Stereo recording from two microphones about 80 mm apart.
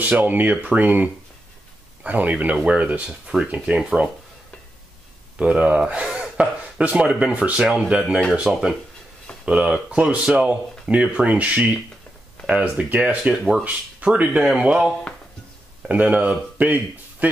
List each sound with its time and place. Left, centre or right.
0.0 s speech: right
5.4 s speech: centre
6.0 s a sound: centre
6.8 s speech: centre
13.3 s speech: centre
13.7 s speech: centre
15.9 s speech: centre